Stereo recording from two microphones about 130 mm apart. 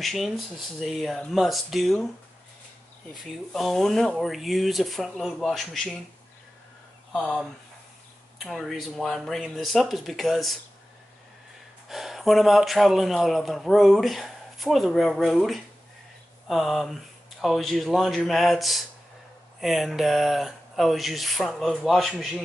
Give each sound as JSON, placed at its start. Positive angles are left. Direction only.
{"t": 0.0, "sound": "a man's voice", "side_deg": 0}
{"t": 3.5, "sound": "a man's voice", "side_deg": 0}
{"t": 7.1, "sound": "a man's voice", "side_deg": 10}
{"t": 11.9, "sound": "a man's voice", "side_deg": 0}